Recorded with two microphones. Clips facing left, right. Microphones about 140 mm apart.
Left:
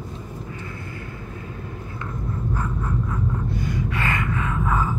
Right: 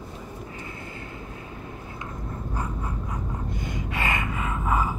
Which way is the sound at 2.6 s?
20° right (ahead or behind).